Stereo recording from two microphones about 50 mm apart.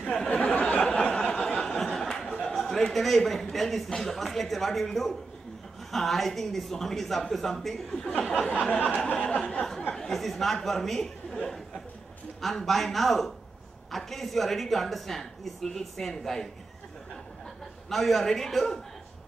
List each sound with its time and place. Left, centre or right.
0.3 s a sound: left
1.8 s a man's voice: centre
8.3 s speech: left
9.9 s a woman's voice: centre
17.8 s a woman's voice: centre